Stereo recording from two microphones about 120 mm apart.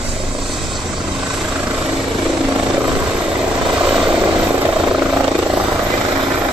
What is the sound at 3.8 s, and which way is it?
Vehicle, 5° right (ahead or behind).